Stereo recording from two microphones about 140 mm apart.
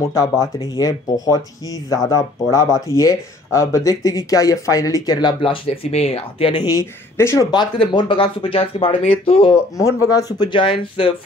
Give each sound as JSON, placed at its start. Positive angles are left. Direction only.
{"t": 0.0, "sound": "speech", "side_deg": 25}
{"t": 5.4, "sound": "speech", "side_deg": 45}
{"t": 7.5, "sound": "speech", "side_deg": 35}
{"t": 9.8, "sound": "speech", "side_deg": 20}